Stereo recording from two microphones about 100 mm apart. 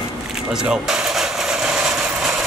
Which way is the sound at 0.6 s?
5° right (ahead or behind).